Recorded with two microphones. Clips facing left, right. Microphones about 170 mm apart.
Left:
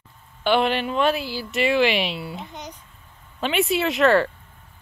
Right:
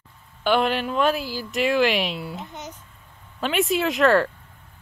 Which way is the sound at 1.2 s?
45° right (ahead or behind).